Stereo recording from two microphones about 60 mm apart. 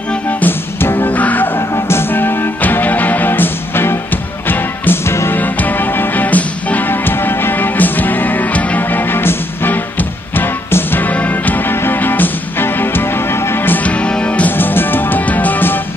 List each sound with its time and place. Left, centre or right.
0.1 s music: left
1.1 s music: left
13.8 s music: left
14.5 s music: left